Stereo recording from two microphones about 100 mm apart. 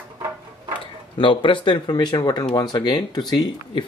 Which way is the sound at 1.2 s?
55° left (ahead or behind).